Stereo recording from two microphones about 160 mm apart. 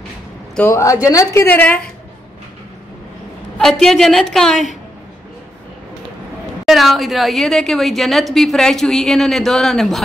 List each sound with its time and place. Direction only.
0.6 s a woman's voice: 15° left (ahead or behind)
3.5 s a woman's voice: 5° left (ahead or behind)
6.6 s a woman's voice: centre (ahead or behind)